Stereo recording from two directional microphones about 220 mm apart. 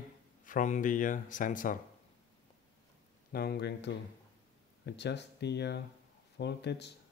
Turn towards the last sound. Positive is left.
turn(degrees=50)  # may be behind; listen again after turning